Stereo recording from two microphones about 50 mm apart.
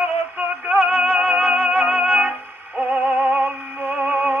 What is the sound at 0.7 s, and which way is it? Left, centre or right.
Music, right.